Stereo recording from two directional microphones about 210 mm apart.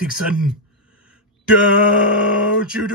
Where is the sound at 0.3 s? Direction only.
5° right (ahead or behind).